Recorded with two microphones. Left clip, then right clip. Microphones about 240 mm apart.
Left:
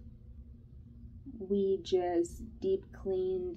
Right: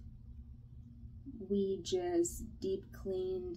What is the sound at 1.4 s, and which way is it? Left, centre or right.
Speech, centre.